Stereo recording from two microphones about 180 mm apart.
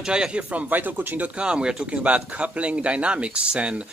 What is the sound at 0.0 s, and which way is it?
Speech, 5° right (ahead or behind).